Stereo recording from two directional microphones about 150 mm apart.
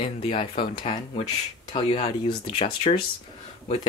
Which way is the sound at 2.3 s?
35° left (ahead or behind).